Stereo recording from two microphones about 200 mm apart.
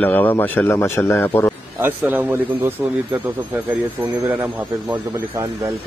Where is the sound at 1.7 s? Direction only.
10° right (ahead or behind).